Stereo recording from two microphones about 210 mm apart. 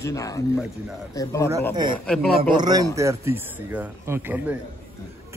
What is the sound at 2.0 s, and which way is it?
Speech, 5° left (ahead or behind).